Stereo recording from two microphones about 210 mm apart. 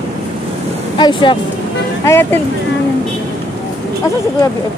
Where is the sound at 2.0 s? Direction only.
10° left (ahead or behind).